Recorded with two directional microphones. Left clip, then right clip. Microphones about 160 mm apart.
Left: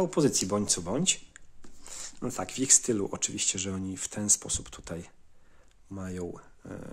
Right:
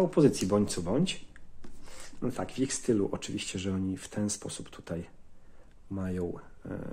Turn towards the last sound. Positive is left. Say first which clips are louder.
# right 2 dB
turn(degrees=20)  # may be behind; listen again after turning